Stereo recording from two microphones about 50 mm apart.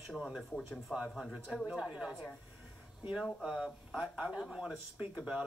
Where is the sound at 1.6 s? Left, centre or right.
Centre.